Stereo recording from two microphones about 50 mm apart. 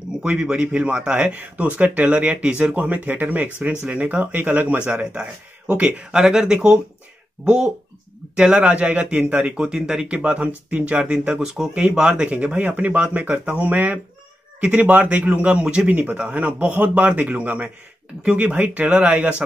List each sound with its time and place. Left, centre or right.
0.2 s speech: centre
5.0 s speech: centre
5.7 s speech: right
6.1 s speech: centre
10.0 s speech: right
11.4 s speech: centre
11.7 s speech: right
18.9 s speech: right